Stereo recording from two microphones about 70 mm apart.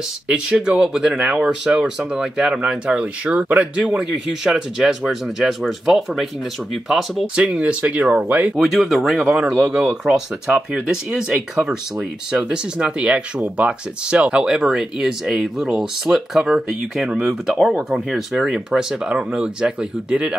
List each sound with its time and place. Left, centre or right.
0.3 s speech: centre
3.3 s speech: right
3.9 s speech: centre
7.3 s speech: centre
8.5 s speech: centre